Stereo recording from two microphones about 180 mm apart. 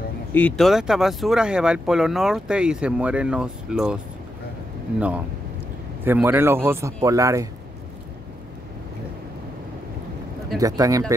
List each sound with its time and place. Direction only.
0.3 s speech: 10° left (ahead or behind)
6.0 s speech: 10° right (ahead or behind)
10.6 s speech: 20° right (ahead or behind)